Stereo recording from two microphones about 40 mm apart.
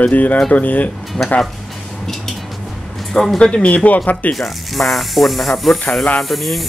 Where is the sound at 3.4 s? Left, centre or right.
Left.